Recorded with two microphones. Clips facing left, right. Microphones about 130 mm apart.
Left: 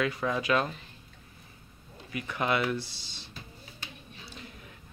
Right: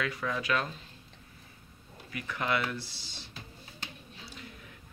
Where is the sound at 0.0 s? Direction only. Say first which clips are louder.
Left 4 dB; 25° left (ahead or behind).